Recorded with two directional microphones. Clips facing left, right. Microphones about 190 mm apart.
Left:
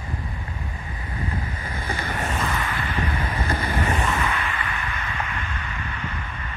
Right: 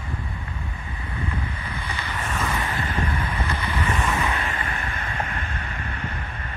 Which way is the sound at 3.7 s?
45° left (ahead or behind).